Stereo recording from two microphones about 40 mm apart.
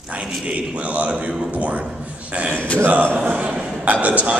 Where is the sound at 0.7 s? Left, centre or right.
Right.